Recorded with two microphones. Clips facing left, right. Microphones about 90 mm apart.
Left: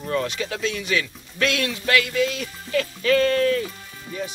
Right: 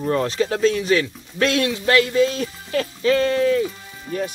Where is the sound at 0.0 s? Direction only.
35° right (ahead or behind); by 3.7 s 15° right (ahead or behind).